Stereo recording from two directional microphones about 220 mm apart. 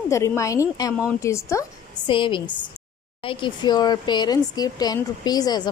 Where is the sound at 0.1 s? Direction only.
15° left (ahead or behind).